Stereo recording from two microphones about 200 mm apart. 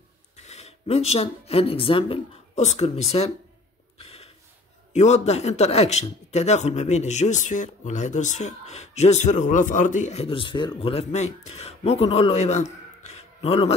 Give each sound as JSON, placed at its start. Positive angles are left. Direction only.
{"t": 0.4, "sound": "speech", "side_deg": 35}
{"t": 4.0, "sound": "gasp", "side_deg": 30}
{"t": 4.9, "sound": "speech", "side_deg": 35}
{"t": 13.0, "sound": "a sound", "side_deg": 30}